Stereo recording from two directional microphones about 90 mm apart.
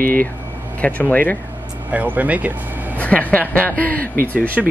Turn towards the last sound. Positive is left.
turn(degrees=-5)  # may be behind; listen again after turning